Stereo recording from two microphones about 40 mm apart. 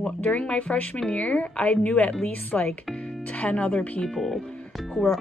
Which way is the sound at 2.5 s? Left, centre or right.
Left.